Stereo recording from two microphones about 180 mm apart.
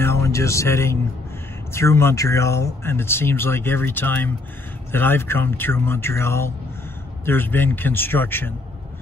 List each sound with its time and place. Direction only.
0.0 s speech: 15° left (ahead or behind)